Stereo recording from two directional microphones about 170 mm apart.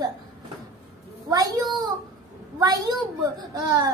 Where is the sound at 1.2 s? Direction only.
20° right (ahead or behind).